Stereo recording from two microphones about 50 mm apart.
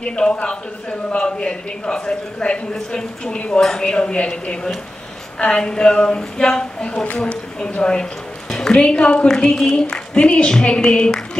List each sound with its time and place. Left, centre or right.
0.0 s a man's voice: centre